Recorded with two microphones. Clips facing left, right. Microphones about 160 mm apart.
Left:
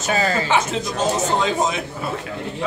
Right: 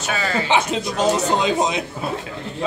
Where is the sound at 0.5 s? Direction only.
15° right (ahead or behind).